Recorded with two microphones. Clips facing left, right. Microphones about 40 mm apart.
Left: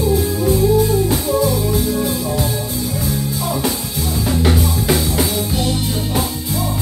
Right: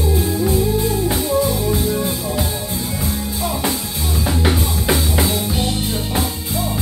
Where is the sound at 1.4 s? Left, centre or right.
Right.